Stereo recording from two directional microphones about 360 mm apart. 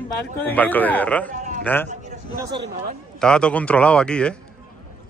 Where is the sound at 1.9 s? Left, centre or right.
Centre.